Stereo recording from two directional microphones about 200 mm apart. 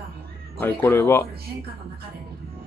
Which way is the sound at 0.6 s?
10° left (ahead or behind).